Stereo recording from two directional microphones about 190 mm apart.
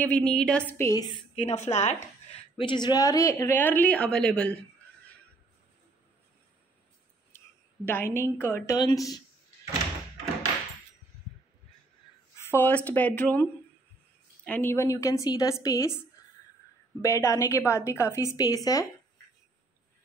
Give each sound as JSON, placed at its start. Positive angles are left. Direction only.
{"t": 0.0, "sound": "a woman's voice", "side_deg": 5}
{"t": 1.6, "sound": "speech", "side_deg": 35}
{"t": 2.5, "sound": "a woman's voice", "side_deg": 25}
{"t": 7.8, "sound": "a woman's voice", "side_deg": 10}
{"t": 12.4, "sound": "a woman's voice", "side_deg": 10}
{"t": 17.0, "sound": "a woman's voice", "side_deg": 15}